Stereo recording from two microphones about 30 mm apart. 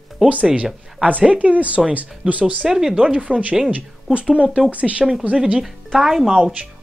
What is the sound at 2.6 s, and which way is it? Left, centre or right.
Speech, centre.